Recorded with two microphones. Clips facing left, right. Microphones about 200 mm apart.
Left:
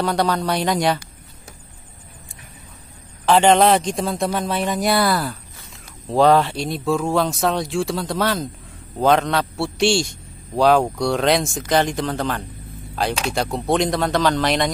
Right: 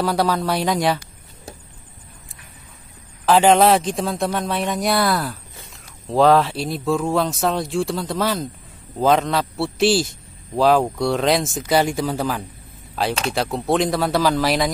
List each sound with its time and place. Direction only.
0.0 s a man's voice: 5° right (ahead or behind)
3.3 s a man's voice: 5° right (ahead or behind)